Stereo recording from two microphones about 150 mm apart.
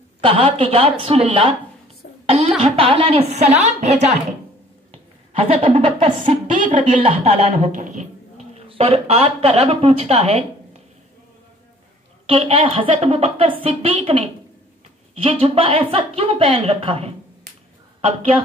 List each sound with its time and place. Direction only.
0.2 s a woman's voice: 35° right (ahead or behind)
2.0 s a sound: 90° left
2.6 s a woman's voice: 40° right (ahead or behind)
5.3 s a woman's voice: 40° right (ahead or behind)
6.4 s a woman's voice: 55° right (ahead or behind)
7.0 s a woman's voice: 40° right (ahead or behind); by 8.1 s 55° right (ahead or behind)
8.5 s a woman's voice: 40° right (ahead or behind)
12.3 s a woman's voice: 40° right (ahead or behind)